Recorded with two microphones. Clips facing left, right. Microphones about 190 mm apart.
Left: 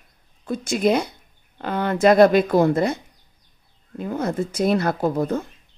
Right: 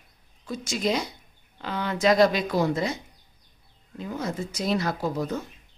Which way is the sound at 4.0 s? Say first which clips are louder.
Left 6 dB; 55° left (ahead or behind).